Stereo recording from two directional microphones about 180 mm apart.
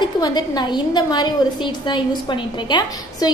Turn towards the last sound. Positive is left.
turn(degrees=25)  # may be behind; listen again after turning